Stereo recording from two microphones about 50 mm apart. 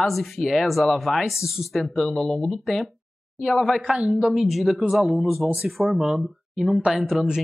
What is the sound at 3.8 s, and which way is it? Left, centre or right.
Speech, right.